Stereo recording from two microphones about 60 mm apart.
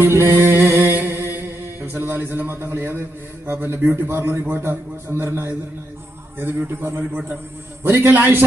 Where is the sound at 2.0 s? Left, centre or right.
Right.